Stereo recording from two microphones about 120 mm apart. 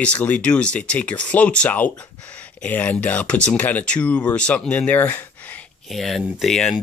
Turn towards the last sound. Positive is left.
turn(degrees=0)  # may be behind; listen again after turning